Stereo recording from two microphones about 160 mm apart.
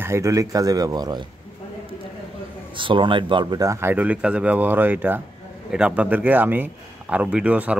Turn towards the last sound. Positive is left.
turn(degrees=-10)  # may be behind; listen again after turning